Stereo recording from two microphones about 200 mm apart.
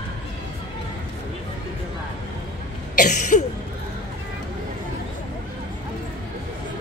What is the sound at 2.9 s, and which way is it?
Throat clearing, 40° left (ahead or behind).